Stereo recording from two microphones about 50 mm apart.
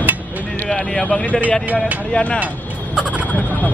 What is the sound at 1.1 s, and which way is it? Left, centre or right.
Speech, left.